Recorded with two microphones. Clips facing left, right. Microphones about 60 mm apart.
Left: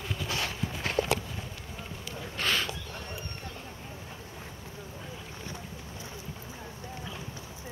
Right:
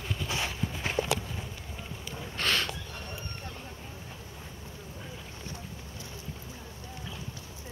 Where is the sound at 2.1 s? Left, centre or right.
Centre.